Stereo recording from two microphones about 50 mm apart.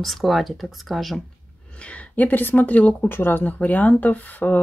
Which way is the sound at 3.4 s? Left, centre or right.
Left.